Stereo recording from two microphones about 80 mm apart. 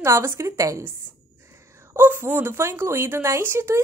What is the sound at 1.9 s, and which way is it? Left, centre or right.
Speech, right.